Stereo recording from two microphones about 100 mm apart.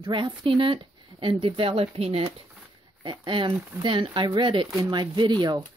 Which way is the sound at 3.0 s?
50° right (ahead or behind).